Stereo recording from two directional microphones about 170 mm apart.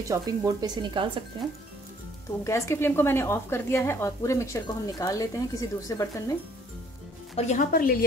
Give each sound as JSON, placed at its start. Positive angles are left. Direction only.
{"t": 0.0, "sound": "speech", "side_deg": -20}
{"t": 2.4, "sound": "a woman's voice", "side_deg": 15}
{"t": 7.3, "sound": "speech", "side_deg": 40}
{"t": 7.7, "sound": "a woman's voice", "side_deg": 60}